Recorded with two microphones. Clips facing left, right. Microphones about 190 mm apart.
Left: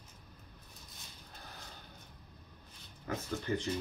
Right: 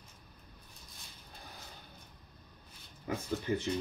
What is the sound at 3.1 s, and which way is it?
Speech, 10° right (ahead or behind).